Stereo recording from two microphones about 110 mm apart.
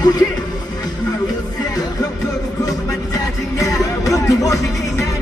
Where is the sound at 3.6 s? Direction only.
30° left (ahead or behind).